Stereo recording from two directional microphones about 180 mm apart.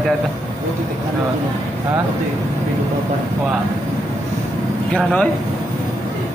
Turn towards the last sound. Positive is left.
turn(degrees=5)  # may be behind; listen again after turning